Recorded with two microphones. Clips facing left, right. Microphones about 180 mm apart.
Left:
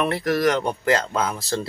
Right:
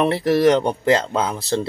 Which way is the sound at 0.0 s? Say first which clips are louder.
Right 5 dB; 30° right (ahead or behind).